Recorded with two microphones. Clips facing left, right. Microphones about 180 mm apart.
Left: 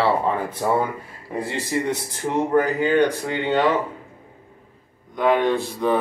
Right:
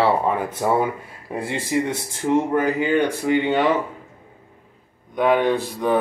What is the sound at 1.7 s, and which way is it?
A man's voice, 10° right (ahead or behind).